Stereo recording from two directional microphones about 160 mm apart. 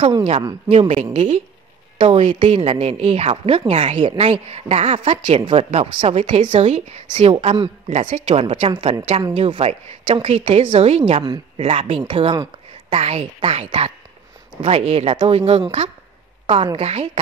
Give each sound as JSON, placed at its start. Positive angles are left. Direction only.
{"t": 0.0, "sound": "a woman's voice", "side_deg": -35}
{"t": 5.6, "sound": "speech", "side_deg": -45}
{"t": 5.9, "sound": "a woman's voice", "side_deg": -35}